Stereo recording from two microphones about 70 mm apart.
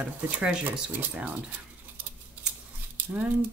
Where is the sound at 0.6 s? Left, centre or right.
Right.